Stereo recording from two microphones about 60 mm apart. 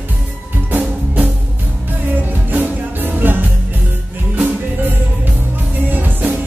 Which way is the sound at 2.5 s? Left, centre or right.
Right.